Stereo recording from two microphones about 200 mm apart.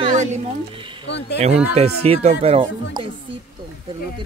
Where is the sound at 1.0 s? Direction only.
60° left (ahead or behind).